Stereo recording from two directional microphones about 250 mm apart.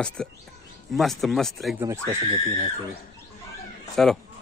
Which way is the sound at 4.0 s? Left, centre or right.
Centre.